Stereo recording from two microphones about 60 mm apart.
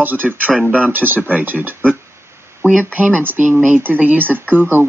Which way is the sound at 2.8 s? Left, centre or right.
Right.